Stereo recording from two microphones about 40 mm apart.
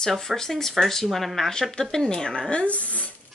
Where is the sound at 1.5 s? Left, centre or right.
Centre.